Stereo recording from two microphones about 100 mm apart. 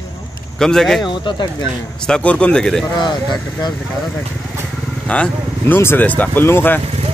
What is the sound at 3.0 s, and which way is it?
Speech, 45° left (ahead or behind).